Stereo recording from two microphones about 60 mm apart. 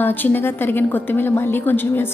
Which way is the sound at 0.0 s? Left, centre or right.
Left.